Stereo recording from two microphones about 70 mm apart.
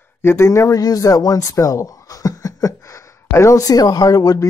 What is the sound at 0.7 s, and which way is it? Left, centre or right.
Speech, left.